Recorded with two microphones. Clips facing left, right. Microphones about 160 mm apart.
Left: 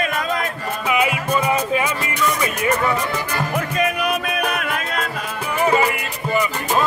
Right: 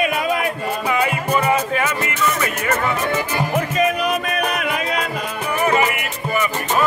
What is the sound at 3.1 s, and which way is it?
Music, 5° right (ahead or behind).